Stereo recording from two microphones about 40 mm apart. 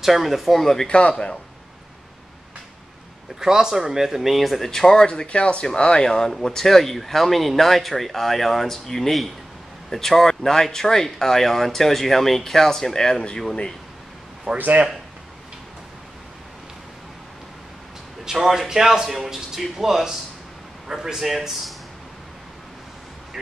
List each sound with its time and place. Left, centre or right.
0.0 s speech: centre
0.6 s speech: centre
0.8 s speech: left
3.3 s a man's voice: centre
4.6 s speech: centre
5.0 s speech: left
14.5 s speech: right
18.2 s a man's voice: centre